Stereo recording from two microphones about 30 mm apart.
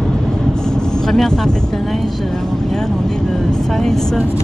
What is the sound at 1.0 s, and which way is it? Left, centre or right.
Vehicle, centre.